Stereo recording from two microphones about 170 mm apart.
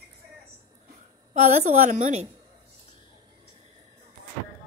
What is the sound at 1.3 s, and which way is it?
Speech, 40° right (ahead or behind).